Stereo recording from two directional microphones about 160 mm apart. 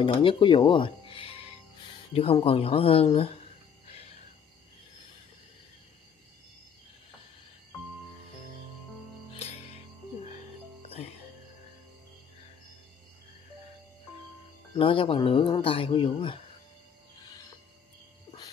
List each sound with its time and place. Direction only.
0.0 s speech: 35° left (ahead or behind)
9.3 s music: 40° left (ahead or behind)
10.9 s music: 40° left (ahead or behind)
14.7 s speech: 35° left (ahead or behind)